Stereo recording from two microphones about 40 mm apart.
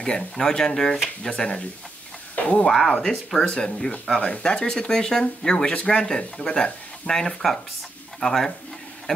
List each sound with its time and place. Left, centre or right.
0.0 s speech: centre
3.4 s speech: left; by 8.5 s centre